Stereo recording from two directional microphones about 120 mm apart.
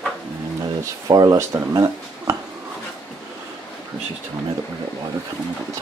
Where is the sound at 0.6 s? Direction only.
35° right (ahead or behind).